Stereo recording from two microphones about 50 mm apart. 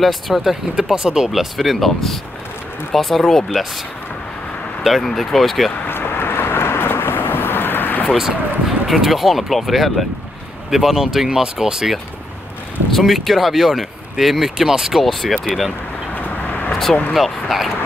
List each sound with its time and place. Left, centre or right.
0.0 s speech: centre
4.8 s speech: centre
5.9 s vehicle: left
8.2 s speech: centre
16.2 s vehicle: left
16.7 s vehicle: centre
17.1 s speech: centre